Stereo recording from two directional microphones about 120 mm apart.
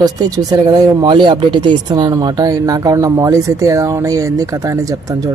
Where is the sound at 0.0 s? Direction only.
30° right (ahead or behind).